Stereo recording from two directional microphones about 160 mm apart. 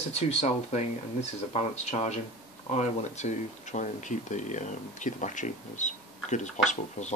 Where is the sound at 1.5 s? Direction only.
40° left (ahead or behind).